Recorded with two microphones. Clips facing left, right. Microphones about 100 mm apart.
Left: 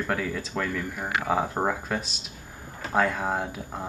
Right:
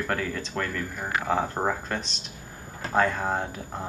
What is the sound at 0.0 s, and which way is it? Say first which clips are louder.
Speech: even; 5° left (ahead or behind).